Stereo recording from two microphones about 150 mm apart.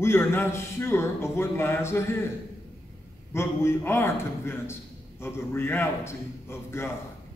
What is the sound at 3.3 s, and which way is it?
A man's voice, 15° left (ahead or behind).